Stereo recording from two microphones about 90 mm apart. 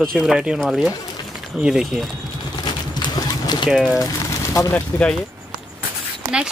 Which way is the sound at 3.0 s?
50° left (ahead or behind).